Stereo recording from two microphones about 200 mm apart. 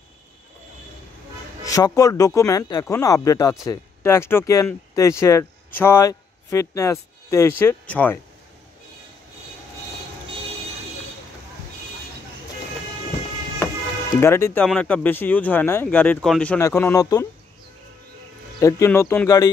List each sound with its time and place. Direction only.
1.6 s speech: 15° left (ahead or behind)
14.2 s speech: 10° left (ahead or behind)
18.6 s speech: 15° left (ahead or behind)